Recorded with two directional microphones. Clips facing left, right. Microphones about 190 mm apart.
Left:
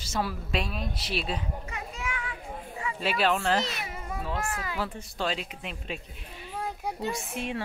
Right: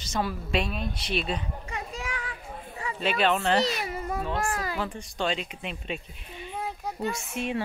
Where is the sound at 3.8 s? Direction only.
40° right (ahead or behind).